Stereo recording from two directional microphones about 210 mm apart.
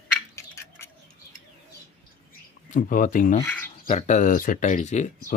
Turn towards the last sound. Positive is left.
turn(degrees=35)  # may be behind; listen again after turning